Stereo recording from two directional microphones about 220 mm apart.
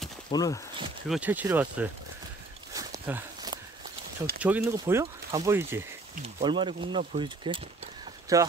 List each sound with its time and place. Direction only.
0.3 s speech: 15° left (ahead or behind)
1.0 s speech: 5° right (ahead or behind)
2.7 s a sound: 15° right (ahead or behind)
4.4 s speech: 5° right (ahead or behind)
6.2 s speech: 20° right (ahead or behind)